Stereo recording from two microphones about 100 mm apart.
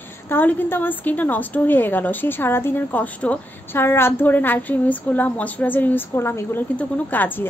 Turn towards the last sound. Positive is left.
turn(degrees=20)  # may be behind; listen again after turning